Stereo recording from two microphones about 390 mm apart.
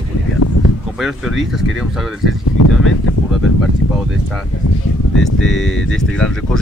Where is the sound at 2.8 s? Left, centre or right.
Left.